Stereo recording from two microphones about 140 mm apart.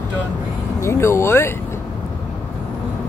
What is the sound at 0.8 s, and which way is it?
Speech, 20° left (ahead or behind).